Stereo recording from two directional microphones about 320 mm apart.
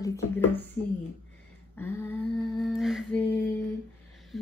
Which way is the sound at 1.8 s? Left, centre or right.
Centre.